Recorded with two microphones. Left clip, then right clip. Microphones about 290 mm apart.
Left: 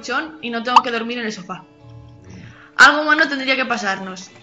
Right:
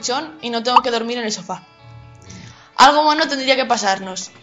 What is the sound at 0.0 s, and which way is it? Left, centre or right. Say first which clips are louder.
A woman's voice: right 1 dB; centre.